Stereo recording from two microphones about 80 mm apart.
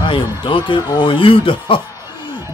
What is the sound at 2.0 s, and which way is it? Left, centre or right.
Chuckle, right.